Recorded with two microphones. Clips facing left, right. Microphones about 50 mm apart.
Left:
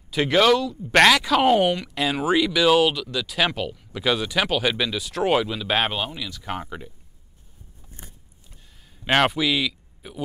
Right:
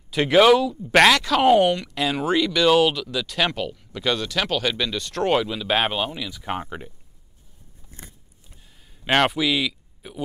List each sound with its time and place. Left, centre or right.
0.1 s speech: centre
6.4 s speech: centre
9.0 s speech: centre